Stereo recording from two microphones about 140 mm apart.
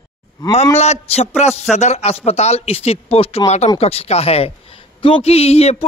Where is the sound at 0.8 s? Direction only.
50° left (ahead or behind).